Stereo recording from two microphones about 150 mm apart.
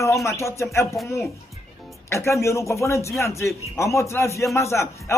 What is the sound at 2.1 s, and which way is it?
Speech, 20° left (ahead or behind).